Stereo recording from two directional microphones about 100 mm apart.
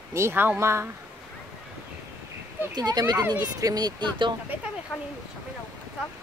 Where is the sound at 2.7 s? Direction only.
45° right (ahead or behind).